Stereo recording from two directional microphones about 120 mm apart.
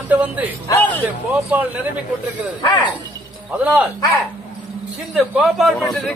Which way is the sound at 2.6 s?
35° left (ahead or behind).